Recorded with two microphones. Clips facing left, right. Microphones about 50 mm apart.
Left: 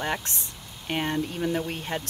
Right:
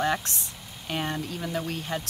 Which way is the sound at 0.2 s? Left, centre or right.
Left.